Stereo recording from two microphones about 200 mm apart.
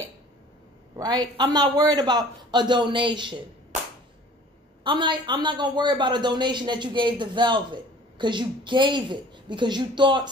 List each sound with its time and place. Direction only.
0.9 s a man's voice: 20° right (ahead or behind)
4.8 s a man's voice: 25° right (ahead or behind)